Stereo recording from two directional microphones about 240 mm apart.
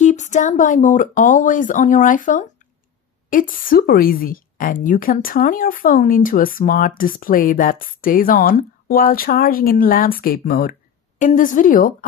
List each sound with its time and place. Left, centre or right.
0.0 s a woman's voice: left